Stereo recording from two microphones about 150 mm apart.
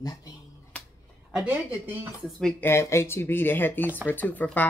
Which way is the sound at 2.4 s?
5° left (ahead or behind).